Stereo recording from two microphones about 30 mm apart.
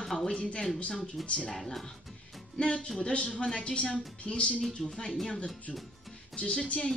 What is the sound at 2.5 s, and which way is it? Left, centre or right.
Speech, left.